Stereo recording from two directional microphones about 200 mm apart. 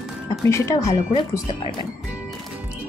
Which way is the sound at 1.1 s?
25° left (ahead or behind).